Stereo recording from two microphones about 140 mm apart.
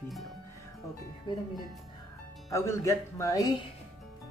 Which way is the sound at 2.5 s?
20° left (ahead or behind).